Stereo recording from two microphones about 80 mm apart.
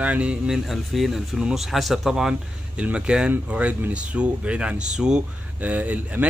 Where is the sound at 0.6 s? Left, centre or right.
Centre.